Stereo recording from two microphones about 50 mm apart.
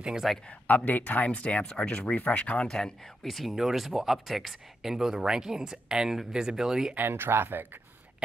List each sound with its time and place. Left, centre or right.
0.5 s speech: left
0.8 s speech: left
1.3 s speech: left
2.7 s speech: centre
7.0 s speech: right